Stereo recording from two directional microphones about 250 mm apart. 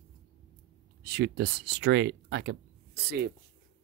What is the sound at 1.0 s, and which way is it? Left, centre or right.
Speech, right.